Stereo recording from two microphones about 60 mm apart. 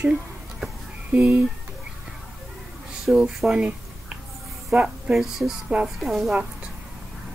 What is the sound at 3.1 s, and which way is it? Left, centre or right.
Speech, centre.